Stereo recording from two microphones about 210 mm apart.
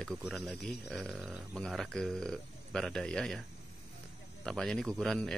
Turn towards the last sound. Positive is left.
turn(degrees=0)  # may be behind; listen again after turning